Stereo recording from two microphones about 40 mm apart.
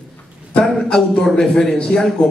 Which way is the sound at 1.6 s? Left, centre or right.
Centre.